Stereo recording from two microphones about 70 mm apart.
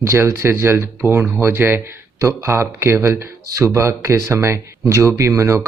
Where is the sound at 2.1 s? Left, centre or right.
Right.